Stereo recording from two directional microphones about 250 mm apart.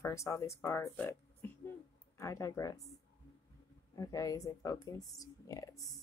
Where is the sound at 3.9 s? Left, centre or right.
Centre.